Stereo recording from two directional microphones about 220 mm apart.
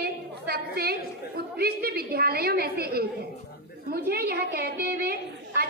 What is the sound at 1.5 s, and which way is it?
A woman's voice, 45° right (ahead or behind).